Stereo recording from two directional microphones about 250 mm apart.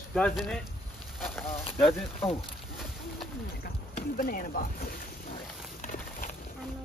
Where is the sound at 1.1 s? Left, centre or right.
Centre.